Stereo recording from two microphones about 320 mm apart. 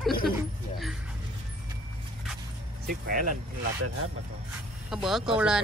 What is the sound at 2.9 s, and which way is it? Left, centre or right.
Speech, right.